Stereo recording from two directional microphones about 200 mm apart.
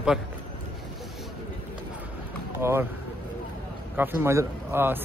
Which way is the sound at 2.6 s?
10° right (ahead or behind).